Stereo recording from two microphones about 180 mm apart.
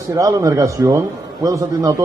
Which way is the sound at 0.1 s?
20° right (ahead or behind).